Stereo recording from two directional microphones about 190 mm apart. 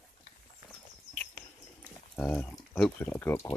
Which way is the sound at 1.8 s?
5° left (ahead or behind).